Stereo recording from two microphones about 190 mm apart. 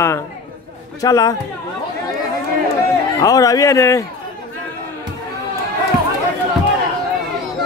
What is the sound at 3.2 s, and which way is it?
Speech, 20° left (ahead or behind).